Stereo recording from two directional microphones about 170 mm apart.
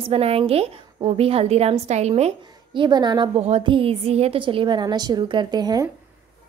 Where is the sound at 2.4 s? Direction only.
25° right (ahead or behind).